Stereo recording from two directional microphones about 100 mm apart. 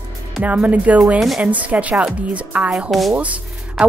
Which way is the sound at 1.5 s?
15° right (ahead or behind).